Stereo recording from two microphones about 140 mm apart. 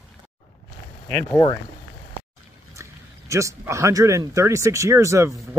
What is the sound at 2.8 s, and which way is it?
Speech, 20° right (ahead or behind).